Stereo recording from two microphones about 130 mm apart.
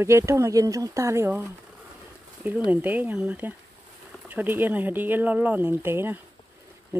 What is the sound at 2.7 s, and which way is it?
Speech, 15° right (ahead or behind).